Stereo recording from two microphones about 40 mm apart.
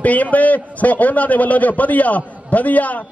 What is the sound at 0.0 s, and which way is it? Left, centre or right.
A man's voice, left.